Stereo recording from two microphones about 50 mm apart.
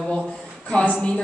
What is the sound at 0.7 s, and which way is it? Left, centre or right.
Speech, left.